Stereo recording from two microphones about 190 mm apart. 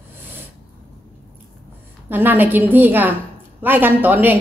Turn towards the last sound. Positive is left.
turn(degrees=-10)  # may be behind; listen again after turning